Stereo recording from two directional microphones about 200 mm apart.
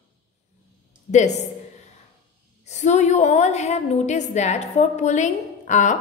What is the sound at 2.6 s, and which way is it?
A woman's voice, 35° left (ahead or behind).